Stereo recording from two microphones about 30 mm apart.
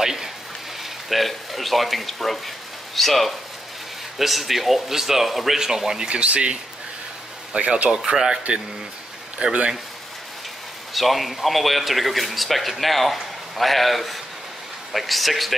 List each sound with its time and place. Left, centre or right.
0.0 s a sound: centre
0.8 s speech: centre
5.6 s speech: centre
6.0 s speech: right
8.1 s speech: right
9.4 s speech: right
10.9 s speech: centre